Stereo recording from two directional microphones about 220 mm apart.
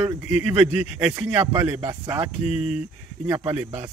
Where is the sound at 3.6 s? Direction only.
15° right (ahead or behind).